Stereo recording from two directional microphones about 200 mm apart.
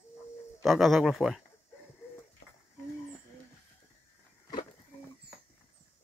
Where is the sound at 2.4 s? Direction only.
60° left (ahead or behind).